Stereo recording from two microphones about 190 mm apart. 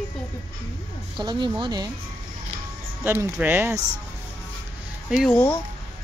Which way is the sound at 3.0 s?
10° right (ahead or behind).